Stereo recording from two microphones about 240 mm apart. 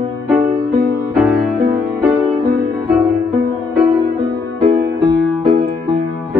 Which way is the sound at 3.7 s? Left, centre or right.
Right.